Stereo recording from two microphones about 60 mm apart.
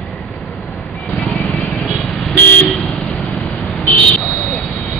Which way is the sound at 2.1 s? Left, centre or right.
Centre.